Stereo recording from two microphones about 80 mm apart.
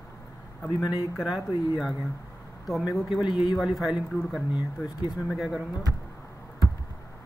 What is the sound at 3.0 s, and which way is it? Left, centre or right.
Speech, centre.